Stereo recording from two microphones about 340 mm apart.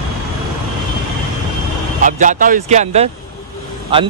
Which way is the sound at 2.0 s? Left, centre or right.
Right.